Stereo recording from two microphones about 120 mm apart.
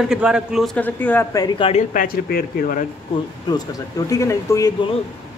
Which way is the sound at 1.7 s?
90° left.